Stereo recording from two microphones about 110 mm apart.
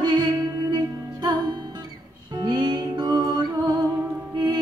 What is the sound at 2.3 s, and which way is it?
Music, 40° right (ahead or behind).